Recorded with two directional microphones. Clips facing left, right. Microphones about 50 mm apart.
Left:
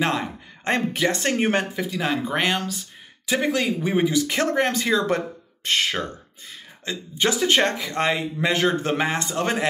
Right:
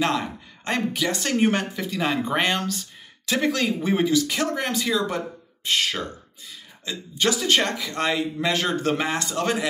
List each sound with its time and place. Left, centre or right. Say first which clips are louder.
0.7 s speech: left 3 dB; left
1.8 s speech: even; centre
4.0 s speech: even; left
4.5 s speech: left 4 dB; left
5.8 s speech: left 2 dB; left
6.5 s cough: left 2 dB; left
7.2 s speech: left 1 dB; left